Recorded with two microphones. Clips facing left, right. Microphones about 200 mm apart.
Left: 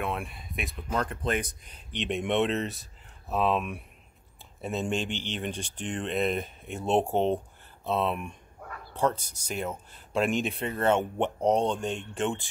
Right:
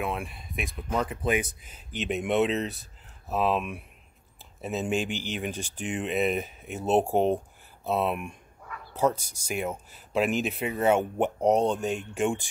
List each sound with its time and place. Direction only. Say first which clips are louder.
0.0 s speech: right 1 dB; centre (ahead or behind)
8.5 s bow-wow: left 1 dB; 40° left (ahead or behind)
8.9 s speech: right 2 dB; 10° right (ahead or behind)